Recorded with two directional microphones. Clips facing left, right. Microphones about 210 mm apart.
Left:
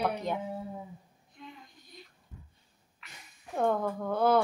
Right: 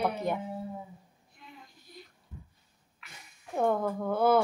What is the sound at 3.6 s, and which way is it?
Speech, 5° right (ahead or behind).